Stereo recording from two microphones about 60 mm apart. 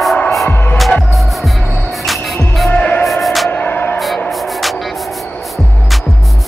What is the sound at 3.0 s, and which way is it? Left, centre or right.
Music, centre.